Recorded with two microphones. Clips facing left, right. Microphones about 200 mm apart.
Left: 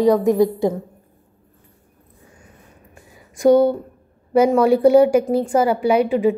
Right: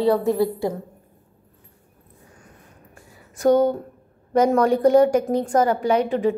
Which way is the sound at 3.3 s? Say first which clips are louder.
Left 4 dB; 10° left (ahead or behind).